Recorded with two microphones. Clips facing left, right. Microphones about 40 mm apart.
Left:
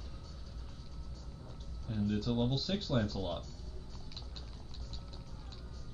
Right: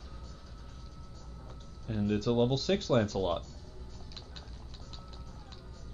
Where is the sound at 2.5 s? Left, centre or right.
Right.